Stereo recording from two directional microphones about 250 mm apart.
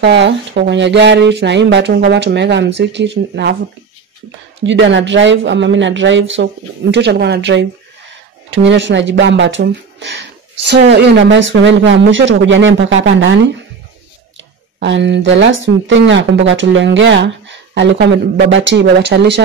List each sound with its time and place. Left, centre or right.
0.0 s speech: right
4.6 s speech: right